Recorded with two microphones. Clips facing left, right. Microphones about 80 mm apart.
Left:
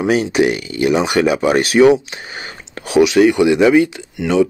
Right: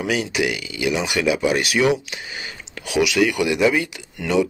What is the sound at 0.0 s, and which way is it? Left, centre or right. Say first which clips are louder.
Speech: left 8 dB; left.